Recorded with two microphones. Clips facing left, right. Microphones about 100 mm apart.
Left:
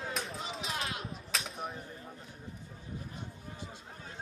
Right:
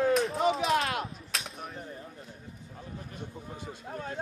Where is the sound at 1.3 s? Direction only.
Centre (ahead or behind).